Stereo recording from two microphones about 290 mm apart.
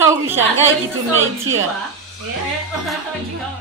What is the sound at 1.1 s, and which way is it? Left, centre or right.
Speech, right.